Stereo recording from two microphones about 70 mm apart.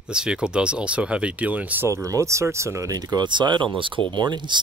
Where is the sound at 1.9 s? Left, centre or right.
Right.